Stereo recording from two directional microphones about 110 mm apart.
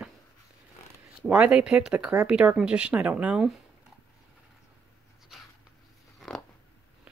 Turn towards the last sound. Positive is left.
turn(degrees=5)  # may be behind; listen again after turning